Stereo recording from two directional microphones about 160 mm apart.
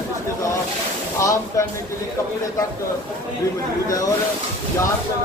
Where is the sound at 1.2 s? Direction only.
20° left (ahead or behind).